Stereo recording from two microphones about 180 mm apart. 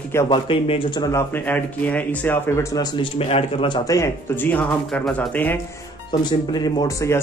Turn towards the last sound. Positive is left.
turn(degrees=15)  # may be behind; listen again after turning